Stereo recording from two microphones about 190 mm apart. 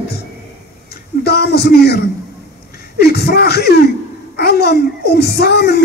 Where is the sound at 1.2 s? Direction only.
60° left (ahead or behind).